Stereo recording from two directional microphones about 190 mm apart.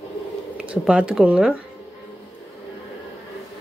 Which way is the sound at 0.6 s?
5° right (ahead or behind).